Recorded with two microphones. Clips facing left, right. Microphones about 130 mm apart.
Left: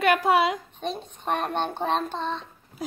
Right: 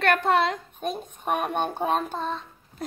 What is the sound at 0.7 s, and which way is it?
A child's voice, 10° right (ahead or behind).